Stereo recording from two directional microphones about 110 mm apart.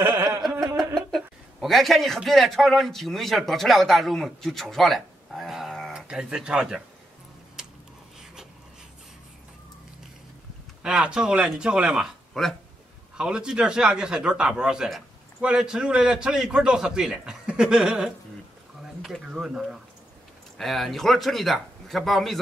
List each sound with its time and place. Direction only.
0.0 s music: 25° right (ahead or behind)
0.7 s a man's voice: centre (ahead or behind)
7.6 s a sound: 5° right (ahead or behind)
10.8 s a man's voice: 10° right (ahead or behind)
13.2 s a man's voice: 10° right (ahead or behind)